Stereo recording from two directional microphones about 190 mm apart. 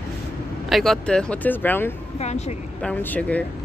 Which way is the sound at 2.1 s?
35° left (ahead or behind).